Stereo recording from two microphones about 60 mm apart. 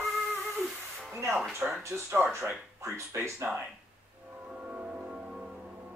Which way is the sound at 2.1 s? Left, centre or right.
Right.